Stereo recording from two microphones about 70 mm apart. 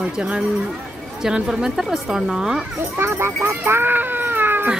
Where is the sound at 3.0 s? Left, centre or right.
Right.